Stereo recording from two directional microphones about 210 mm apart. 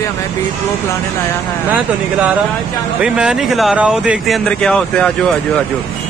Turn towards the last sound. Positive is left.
turn(degrees=5)  # may be behind; listen again after turning